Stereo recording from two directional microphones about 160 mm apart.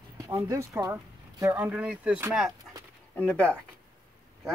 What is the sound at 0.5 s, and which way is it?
Speech, 20° right (ahead or behind).